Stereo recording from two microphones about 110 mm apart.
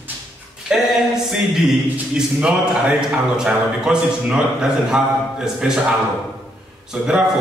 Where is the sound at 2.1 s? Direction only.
5° right (ahead or behind).